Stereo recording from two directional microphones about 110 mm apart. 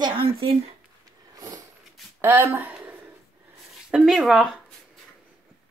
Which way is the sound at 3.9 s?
Centre (ahead or behind).